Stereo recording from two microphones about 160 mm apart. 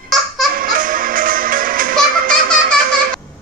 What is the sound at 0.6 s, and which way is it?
Music, 60° right (ahead or behind).